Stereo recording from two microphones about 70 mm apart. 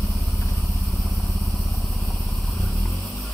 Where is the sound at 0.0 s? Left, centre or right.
Centre.